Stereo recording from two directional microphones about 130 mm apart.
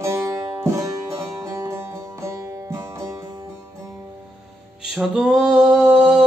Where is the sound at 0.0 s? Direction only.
20° right (ahead or behind).